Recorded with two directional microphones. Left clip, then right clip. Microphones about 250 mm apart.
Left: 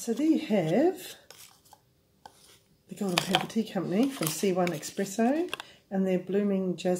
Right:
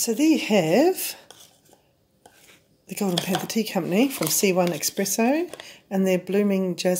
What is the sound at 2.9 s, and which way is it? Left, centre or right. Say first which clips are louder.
Speech: right 2 dB; right.